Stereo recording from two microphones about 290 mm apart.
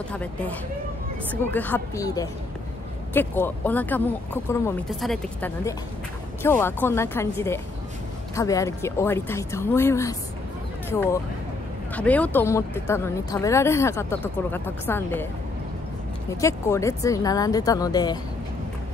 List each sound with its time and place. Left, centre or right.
0.1 s speech: centre
16.3 s speech: centre